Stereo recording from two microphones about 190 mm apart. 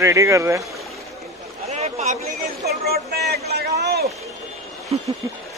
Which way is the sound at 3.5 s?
55° right (ahead or behind).